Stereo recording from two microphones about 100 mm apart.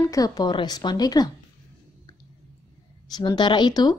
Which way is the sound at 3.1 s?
45° left (ahead or behind).